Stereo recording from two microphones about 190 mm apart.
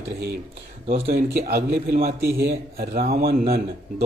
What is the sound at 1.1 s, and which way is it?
A man's voice, 55° right (ahead or behind).